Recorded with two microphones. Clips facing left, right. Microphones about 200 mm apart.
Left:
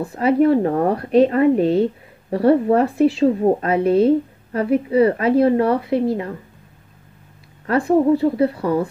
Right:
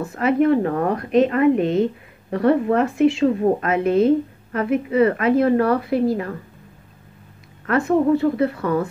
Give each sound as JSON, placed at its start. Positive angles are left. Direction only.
{"t": 0.0, "sound": "a woman's voice", "side_deg": 30}
{"t": 7.6, "sound": "a woman's voice", "side_deg": 30}